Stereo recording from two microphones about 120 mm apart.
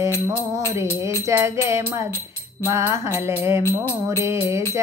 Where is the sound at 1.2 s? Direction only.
25° right (ahead or behind).